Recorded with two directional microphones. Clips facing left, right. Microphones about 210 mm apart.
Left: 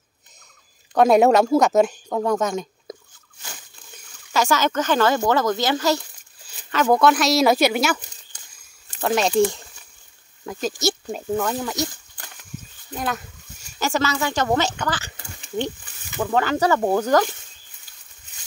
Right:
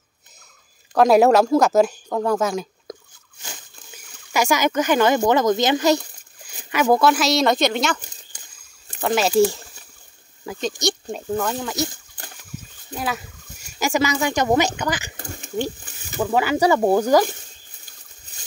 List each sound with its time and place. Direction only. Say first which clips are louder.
0.9 s a woman's voice: right 1 dB; centre (ahead or behind)
9.0 s a woman's voice: right 1 dB; centre (ahead or behind)
12.9 s a woman's voice: even; 5° right (ahead or behind)
15.1 s a sound: right 7 dB; 45° right (ahead or behind)
16.2 s speech: right 1 dB; 10° right (ahead or behind)